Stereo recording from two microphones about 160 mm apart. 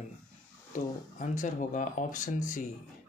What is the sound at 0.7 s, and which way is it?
Speech, 50° left (ahead or behind).